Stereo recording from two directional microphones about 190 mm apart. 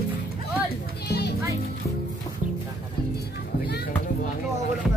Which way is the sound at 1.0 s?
60° left (ahead or behind).